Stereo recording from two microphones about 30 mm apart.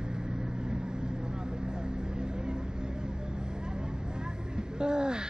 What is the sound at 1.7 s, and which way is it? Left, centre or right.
Vehicle, right.